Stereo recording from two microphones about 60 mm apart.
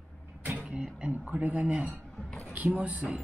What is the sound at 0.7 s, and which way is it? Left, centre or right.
Speech, right.